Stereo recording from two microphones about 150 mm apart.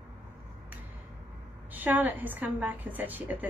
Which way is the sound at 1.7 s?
10° right (ahead or behind).